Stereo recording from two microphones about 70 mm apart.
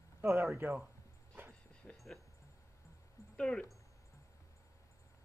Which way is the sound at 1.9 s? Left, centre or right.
Centre.